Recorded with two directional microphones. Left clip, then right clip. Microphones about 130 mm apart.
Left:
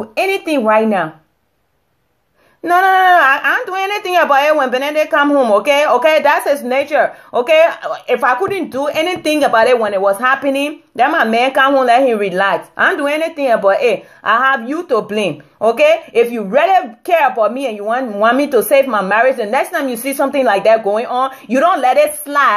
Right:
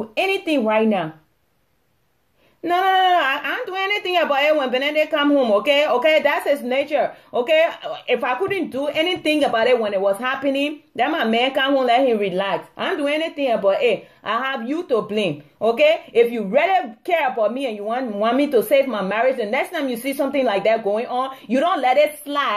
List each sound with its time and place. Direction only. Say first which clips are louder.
0.7 s speech: left 8 dB; 20° right (ahead or behind)
2.6 s speech: left 7 dB; 20° right (ahead or behind)